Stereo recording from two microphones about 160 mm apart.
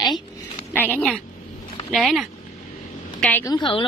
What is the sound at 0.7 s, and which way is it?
A woman's voice, 10° left (ahead or behind).